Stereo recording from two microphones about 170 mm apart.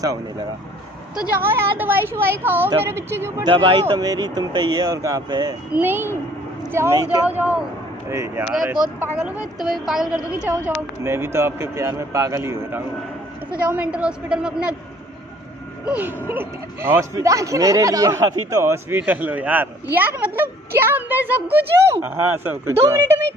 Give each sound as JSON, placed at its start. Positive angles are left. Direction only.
{"t": 1.4, "sound": "speech", "side_deg": -15}
{"t": 3.4, "sound": "speech", "side_deg": -30}
{"t": 5.7, "sound": "a woman's voice", "side_deg": -10}
{"t": 15.9, "sound": "speech", "side_deg": -10}